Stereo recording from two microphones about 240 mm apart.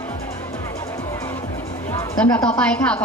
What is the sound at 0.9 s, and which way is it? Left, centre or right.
A woman's voice, centre.